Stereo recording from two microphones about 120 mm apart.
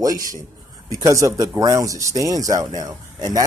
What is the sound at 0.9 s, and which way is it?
Speech, 25° right (ahead or behind).